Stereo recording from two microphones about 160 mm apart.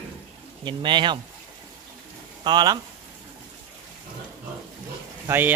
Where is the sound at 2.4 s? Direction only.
25° right (ahead or behind).